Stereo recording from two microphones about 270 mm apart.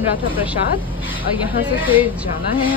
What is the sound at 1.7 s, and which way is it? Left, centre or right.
Speech, centre.